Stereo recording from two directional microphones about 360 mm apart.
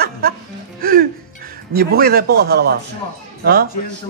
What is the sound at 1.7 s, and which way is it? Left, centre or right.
Speech, right.